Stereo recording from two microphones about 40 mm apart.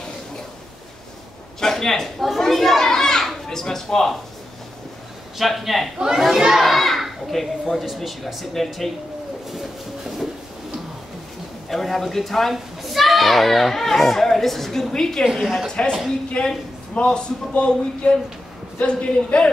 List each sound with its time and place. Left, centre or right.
1.6 s a man's voice: centre
2.9 s children playing: centre
3.4 s speech: centre
5.4 s a child's voice: centre
9.5 s a sound: centre
11.7 s a child's voice: centre
15.3 s a child's voice: centre
16.4 s a man's voice: left